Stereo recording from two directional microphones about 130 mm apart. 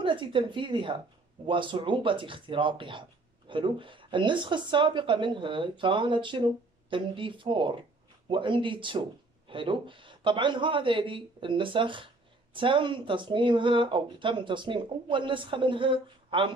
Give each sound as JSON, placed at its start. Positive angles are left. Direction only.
{"t": 0.0, "sound": "speech", "side_deg": -40}